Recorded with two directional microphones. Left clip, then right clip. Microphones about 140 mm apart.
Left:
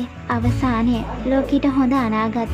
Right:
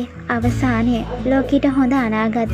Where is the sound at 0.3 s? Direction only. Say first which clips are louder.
Right 2 dB; 20° right (ahead or behind).